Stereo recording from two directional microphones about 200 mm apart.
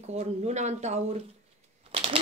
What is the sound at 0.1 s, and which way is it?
Speech, 30° right (ahead or behind).